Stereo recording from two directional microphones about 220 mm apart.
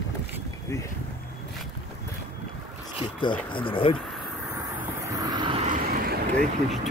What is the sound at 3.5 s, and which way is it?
Speech, 25° left (ahead or behind).